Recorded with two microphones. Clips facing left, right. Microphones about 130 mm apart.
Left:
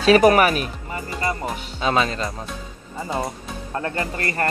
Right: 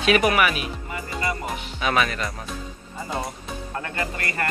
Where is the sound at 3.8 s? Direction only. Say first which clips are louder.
Left 5 dB; 35° left (ahead or behind).